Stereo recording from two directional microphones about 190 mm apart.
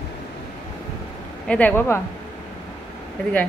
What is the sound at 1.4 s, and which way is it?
Speech, 10° left (ahead or behind).